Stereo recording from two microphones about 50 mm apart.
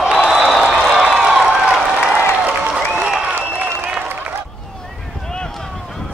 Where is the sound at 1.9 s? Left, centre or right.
Centre.